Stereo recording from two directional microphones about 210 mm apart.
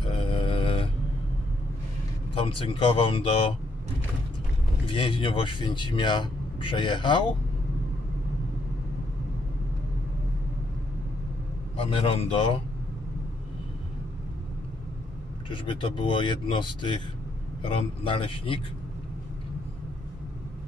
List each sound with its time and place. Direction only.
0.0 s mantra: 25° left (ahead or behind)
2.3 s speech: 25° left (ahead or behind)
4.8 s speech: 25° left (ahead or behind)
11.7 s speech: 25° left (ahead or behind)
15.5 s speech: 25° left (ahead or behind)